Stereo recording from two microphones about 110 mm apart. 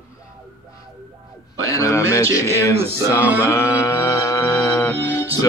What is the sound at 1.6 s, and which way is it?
Music, 30° left (ahead or behind).